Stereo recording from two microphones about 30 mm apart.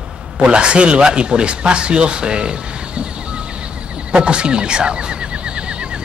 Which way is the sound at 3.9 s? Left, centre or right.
Right.